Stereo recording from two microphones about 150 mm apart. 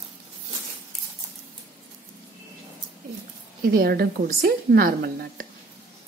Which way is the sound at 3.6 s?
80° right.